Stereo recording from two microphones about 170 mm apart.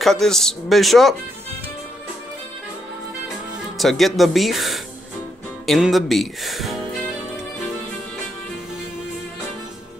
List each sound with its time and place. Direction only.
0.0 s speech: centre (ahead or behind)
3.7 s speech: centre (ahead or behind)